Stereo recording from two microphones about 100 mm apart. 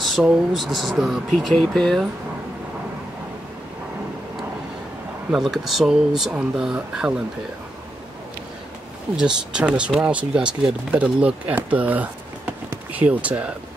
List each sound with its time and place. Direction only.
0.0 s speech: 5° right (ahead or behind)
5.3 s speech: centre (ahead or behind)
9.1 s speech: 10° right (ahead or behind)